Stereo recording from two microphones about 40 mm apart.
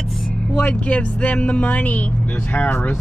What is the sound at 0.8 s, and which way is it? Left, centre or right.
Speech, left.